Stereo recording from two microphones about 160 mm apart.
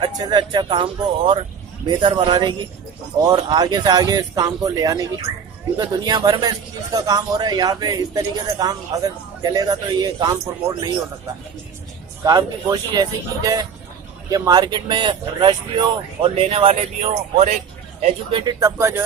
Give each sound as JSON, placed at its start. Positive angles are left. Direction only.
{"t": 0.0, "sound": "a man's voice", "side_deg": -25}
{"t": 12.9, "sound": "a man's voice", "side_deg": -25}
{"t": 18.0, "sound": "a man's voice", "side_deg": -30}